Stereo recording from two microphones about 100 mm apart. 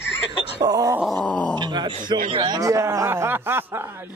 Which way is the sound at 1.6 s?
50° right (ahead or behind).